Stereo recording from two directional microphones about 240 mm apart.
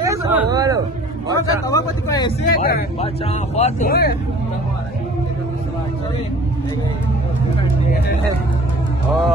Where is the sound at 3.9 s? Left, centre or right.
Left.